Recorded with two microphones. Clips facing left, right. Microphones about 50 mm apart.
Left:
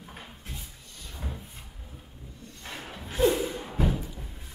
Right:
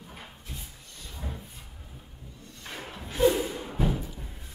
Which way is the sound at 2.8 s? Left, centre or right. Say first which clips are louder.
Right 1 dB; centre.